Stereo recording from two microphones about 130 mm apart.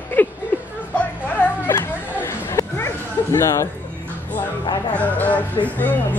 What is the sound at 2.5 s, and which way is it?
Bow-wow, 20° left (ahead or behind).